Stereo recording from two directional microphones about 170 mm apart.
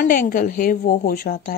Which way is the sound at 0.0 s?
55° left (ahead or behind).